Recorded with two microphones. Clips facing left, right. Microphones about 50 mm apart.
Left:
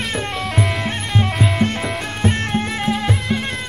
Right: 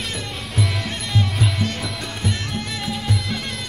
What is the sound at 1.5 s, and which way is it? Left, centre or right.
Music, left.